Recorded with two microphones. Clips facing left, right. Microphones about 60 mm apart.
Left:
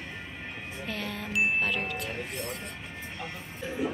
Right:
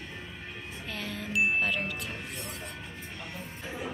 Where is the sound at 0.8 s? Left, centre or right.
Centre.